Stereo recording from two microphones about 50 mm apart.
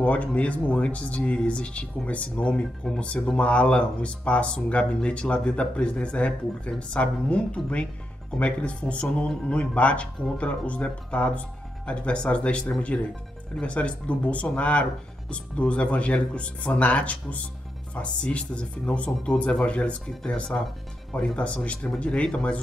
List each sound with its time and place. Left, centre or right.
0.0 s speech: left
21.1 s speech: left